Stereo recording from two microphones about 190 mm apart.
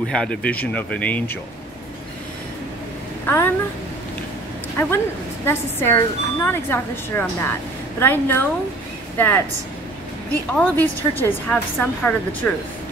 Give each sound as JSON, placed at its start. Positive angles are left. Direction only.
{"t": 0.1, "sound": "speech", "side_deg": 5}
{"t": 3.3, "sound": "speech", "side_deg": 10}
{"t": 4.7, "sound": "speech", "side_deg": 10}
{"t": 10.5, "sound": "speech", "side_deg": 10}